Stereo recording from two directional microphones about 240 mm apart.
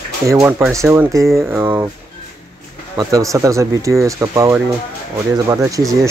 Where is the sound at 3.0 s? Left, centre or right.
Centre.